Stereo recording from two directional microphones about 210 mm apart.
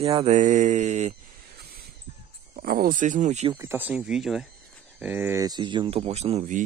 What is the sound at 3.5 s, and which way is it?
Speech, 10° right (ahead or behind).